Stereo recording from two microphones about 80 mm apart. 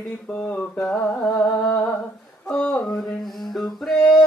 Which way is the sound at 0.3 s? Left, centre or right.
Centre.